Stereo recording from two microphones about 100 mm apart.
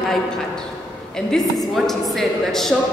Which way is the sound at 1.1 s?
5° left (ahead or behind).